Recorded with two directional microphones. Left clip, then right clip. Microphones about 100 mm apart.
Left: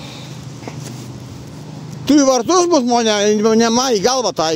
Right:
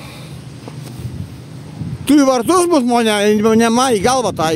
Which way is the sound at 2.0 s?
85° right.